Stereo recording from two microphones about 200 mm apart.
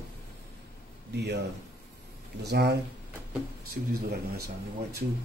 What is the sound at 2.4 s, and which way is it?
Speech, 55° right (ahead or behind).